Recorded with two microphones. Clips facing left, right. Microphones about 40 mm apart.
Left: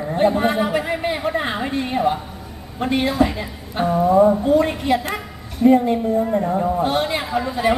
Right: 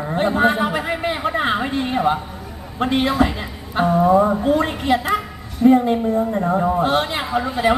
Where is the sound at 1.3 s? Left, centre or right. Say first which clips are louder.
Right 3 dB; right.